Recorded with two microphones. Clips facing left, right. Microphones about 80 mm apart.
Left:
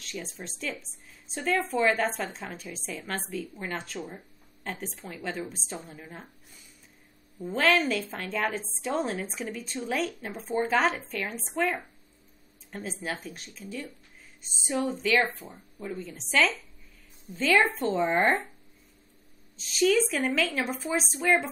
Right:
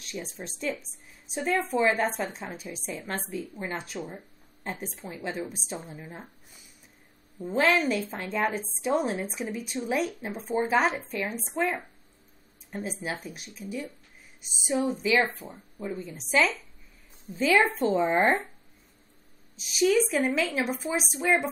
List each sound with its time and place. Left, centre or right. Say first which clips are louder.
0.0 s a sound: right 1 dB; centre
0.4 s a woman's voice: right 4 dB; right
7.4 s a woman's voice: right 1 dB; right
19.5 s speech: right 1 dB; centre